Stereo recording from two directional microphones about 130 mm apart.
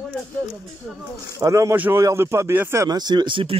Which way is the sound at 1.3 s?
25° right (ahead or behind).